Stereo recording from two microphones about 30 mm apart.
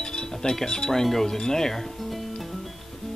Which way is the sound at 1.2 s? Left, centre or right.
Centre.